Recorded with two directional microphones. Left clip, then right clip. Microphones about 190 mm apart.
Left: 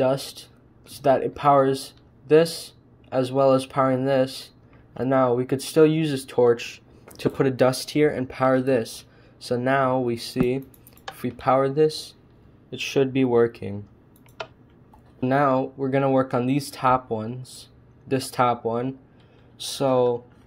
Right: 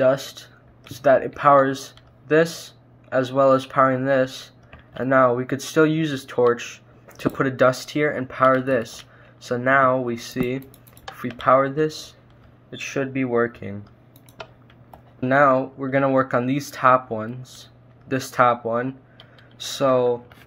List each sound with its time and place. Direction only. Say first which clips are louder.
0.0 s speech: right 4 dB; 30° left (ahead or behind)
12.6 s speech: left 4 dB; 40° left (ahead or behind)
14.4 s tick-tock: left 3 dB; centre (ahead or behind)
15.2 s speech: right 4 dB; 30° left (ahead or behind)